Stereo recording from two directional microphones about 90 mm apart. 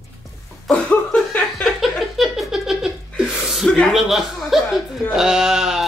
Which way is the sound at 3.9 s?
Centre (ahead or behind).